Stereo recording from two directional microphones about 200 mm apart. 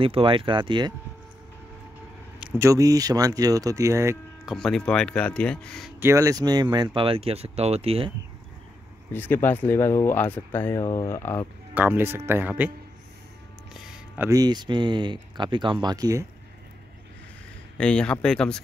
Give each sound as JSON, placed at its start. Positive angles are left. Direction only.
{"t": 0.0, "sound": "speech", "side_deg": -25}
{"t": 2.6, "sound": "speech", "side_deg": -15}
{"t": 4.5, "sound": "speech", "side_deg": 0}
{"t": 5.9, "sound": "speech", "side_deg": -15}
{"t": 9.1, "sound": "speech", "side_deg": 10}
{"t": 11.7, "sound": "speech", "side_deg": -10}
{"t": 13.7, "sound": "speech", "side_deg": -5}
{"t": 17.7, "sound": "speech", "side_deg": 5}